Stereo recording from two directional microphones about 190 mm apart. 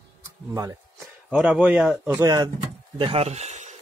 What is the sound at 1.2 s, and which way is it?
A man's voice, 5° right (ahead or behind).